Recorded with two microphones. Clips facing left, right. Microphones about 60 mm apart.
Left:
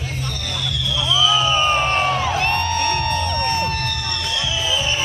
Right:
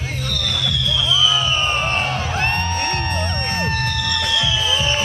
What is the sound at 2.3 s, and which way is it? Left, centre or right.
Music, right.